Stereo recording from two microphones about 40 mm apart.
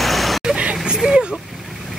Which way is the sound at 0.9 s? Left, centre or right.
Centre.